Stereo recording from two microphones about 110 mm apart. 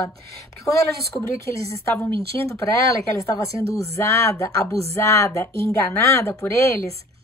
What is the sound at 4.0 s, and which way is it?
A woman's voice, 25° left (ahead or behind).